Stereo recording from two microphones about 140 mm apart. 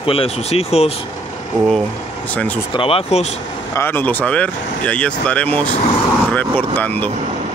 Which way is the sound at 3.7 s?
15° left (ahead or behind).